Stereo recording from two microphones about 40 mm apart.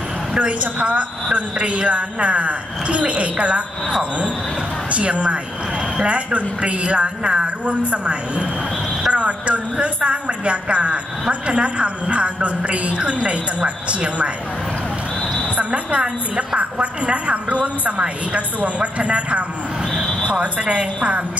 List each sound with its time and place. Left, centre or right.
0.3 s a woman's voice: right
4.9 s a woman's voice: right
15.5 s a woman's voice: right